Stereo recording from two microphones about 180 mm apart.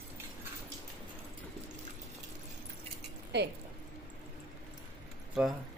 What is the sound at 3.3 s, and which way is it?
Speech, 70° right (ahead or behind).